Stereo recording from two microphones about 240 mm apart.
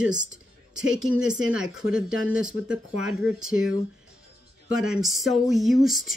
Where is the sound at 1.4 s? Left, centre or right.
Right.